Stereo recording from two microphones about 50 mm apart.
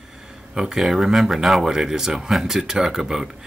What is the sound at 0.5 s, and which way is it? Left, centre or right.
Speech, centre.